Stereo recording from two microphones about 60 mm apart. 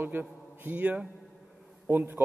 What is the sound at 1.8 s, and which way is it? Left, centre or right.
Speech, right.